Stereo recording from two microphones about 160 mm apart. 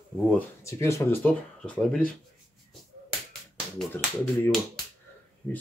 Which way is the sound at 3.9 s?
15° left (ahead or behind).